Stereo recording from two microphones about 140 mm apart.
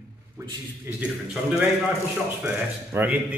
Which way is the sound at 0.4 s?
15° right (ahead or behind).